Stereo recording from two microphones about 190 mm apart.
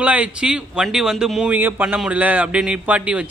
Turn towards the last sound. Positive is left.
turn(degrees=-5)  # may be behind; listen again after turning